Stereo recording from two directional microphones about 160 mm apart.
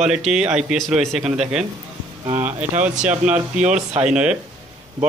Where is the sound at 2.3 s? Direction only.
50° right (ahead or behind).